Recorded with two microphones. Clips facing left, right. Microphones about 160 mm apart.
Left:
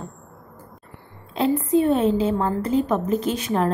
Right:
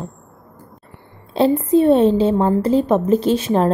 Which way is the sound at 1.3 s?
30° right (ahead or behind).